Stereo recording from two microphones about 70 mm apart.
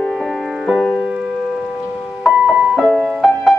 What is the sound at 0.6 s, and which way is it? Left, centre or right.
Music, centre.